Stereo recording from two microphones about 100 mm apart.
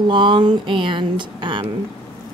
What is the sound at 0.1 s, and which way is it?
Speech, 50° right (ahead or behind).